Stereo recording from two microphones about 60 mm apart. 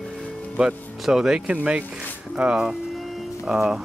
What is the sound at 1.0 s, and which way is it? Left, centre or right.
Speech, centre.